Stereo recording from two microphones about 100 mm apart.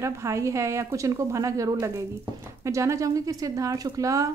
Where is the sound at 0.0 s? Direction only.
30° right (ahead or behind).